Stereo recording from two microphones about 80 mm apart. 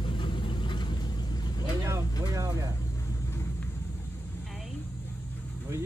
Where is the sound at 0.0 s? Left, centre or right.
Left.